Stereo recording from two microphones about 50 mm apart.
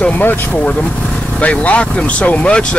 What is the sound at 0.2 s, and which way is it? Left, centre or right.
Speech, left.